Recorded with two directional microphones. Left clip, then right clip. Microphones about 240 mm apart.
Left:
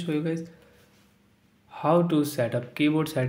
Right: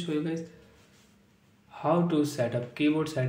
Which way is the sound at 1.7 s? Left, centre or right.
Left.